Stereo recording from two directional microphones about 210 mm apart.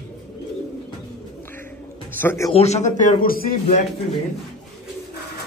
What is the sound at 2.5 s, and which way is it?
A man's voice, 30° left (ahead or behind).